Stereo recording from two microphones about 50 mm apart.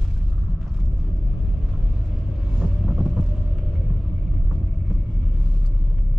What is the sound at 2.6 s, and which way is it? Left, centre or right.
Vehicle, centre.